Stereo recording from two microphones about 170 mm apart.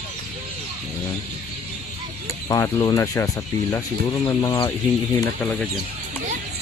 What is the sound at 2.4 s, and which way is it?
Speech, 15° left (ahead or behind).